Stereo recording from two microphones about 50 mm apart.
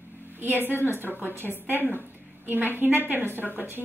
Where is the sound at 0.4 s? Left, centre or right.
Right.